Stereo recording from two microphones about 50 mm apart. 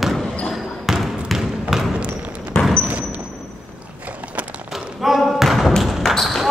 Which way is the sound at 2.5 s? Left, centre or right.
Centre.